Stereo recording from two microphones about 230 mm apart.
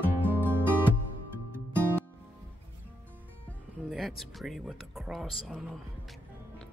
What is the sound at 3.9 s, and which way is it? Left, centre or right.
Speech, centre.